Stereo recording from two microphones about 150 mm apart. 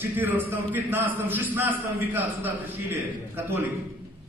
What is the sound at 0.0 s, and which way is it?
A man's voice, 15° right (ahead or behind).